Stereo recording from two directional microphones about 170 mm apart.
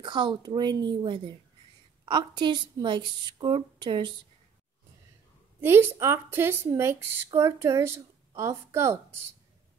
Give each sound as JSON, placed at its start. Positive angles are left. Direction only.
{"t": 0.0, "sound": "a woman's voice", "side_deg": -30}
{"t": 5.6, "sound": "speech", "side_deg": -15}